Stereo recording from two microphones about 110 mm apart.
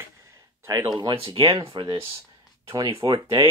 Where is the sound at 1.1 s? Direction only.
55° right (ahead or behind).